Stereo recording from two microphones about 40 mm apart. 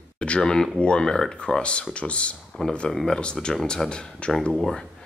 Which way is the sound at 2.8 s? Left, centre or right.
Centre.